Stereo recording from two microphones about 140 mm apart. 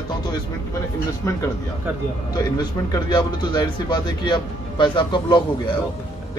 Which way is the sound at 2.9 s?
30° left (ahead or behind).